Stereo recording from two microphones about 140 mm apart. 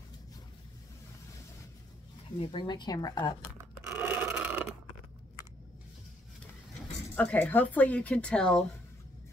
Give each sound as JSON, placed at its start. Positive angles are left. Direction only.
{"t": 2.4, "sound": "speech", "side_deg": 35}
{"t": 3.5, "sound": "rub", "side_deg": -10}
{"t": 7.2, "sound": "speech", "side_deg": 10}